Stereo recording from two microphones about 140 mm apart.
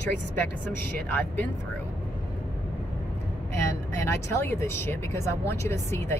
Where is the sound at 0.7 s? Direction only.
15° left (ahead or behind).